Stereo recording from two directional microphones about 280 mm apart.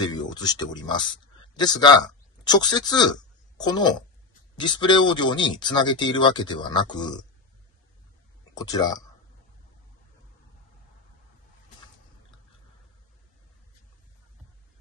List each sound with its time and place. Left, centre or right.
0.0 s speech: centre
8.5 s speech: centre